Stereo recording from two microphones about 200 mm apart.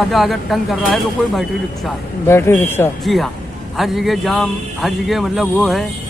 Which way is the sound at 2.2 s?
10° left (ahead or behind).